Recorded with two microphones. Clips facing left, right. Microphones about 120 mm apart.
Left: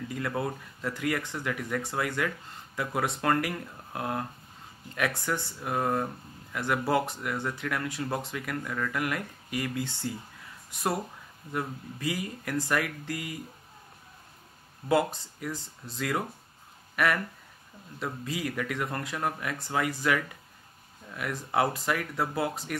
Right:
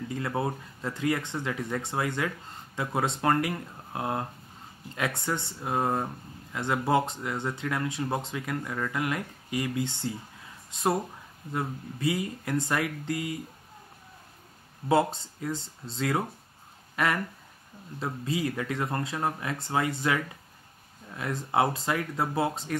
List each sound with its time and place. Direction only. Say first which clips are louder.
0.1 s speech: right 2 dB; 25° right (ahead or behind)
14.9 s speech: right 2 dB; 25° right (ahead or behind)